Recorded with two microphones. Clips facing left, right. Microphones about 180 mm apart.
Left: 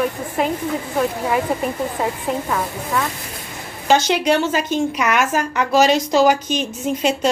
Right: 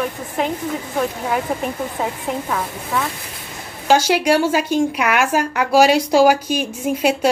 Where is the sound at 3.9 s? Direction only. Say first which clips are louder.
Right 1 dB; 10° right (ahead or behind).